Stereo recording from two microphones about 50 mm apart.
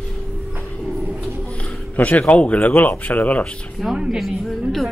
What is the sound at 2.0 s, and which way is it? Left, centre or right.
Speech, left.